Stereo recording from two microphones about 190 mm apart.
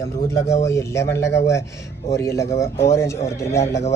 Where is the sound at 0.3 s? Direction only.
15° left (ahead or behind).